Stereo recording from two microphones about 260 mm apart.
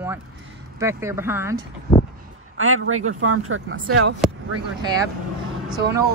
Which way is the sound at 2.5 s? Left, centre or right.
Right.